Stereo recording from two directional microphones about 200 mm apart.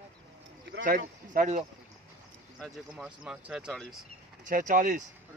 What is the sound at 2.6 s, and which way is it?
Speech, 5° right (ahead or behind).